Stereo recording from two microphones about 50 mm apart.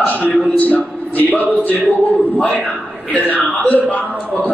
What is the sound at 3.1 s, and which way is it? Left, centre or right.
Speech, left.